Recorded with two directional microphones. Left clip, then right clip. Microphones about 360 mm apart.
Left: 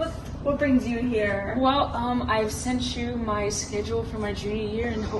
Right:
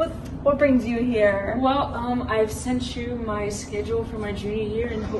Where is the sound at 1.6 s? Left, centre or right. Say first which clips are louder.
Left 1 dB; centre.